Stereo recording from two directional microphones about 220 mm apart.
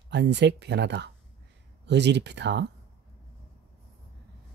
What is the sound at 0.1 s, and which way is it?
Speech, 50° right (ahead or behind).